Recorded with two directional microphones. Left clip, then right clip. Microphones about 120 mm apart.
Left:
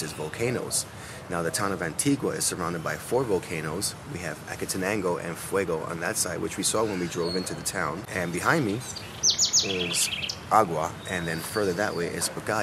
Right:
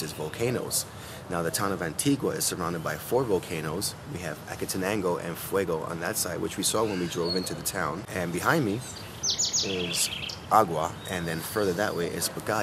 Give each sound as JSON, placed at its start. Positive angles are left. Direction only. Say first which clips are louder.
{"t": 0.0, "sound": "speech", "louder": "left 1 dB", "side_deg": -5}
{"t": 9.2, "sound": "bird", "louder": "left 4 dB", "side_deg": 20}
{"t": 10.5, "sound": "speech", "louder": "even", "side_deg": -5}